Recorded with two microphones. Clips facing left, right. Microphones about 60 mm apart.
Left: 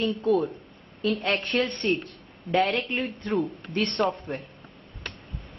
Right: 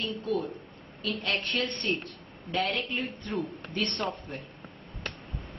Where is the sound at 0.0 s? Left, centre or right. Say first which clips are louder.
Left 7 dB; centre.